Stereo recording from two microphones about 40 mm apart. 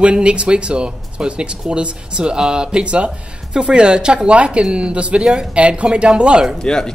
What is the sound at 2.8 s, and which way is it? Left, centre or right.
Speech, right.